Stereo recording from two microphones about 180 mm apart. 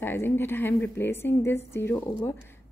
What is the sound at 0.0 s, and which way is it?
A woman's voice, 10° left (ahead or behind).